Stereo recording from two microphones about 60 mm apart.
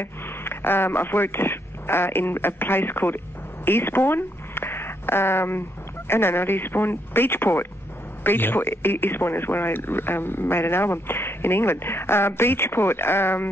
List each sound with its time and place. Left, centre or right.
0.0 s speech: left
3.6 s a sound: left
6.0 s speech: left